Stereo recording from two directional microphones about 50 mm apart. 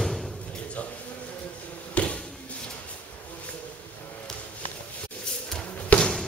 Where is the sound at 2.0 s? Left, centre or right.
Left.